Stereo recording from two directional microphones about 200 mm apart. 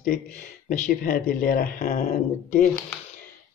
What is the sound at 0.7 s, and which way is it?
Speech, 45° left (ahead or behind).